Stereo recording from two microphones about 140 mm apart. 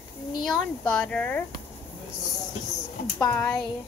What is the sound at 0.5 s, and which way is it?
Speech, 5° left (ahead or behind).